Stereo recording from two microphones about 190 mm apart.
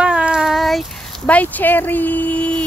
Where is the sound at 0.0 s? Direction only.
5° right (ahead or behind).